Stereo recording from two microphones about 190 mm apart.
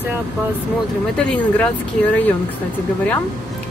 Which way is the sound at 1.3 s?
5° left (ahead or behind).